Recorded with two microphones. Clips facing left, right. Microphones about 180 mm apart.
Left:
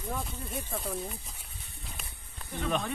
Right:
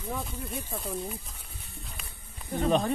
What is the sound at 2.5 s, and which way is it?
Speech, 40° right (ahead or behind).